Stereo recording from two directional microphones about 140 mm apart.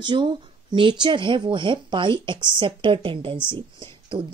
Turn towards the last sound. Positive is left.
turn(degrees=-35)  # may be behind; listen again after turning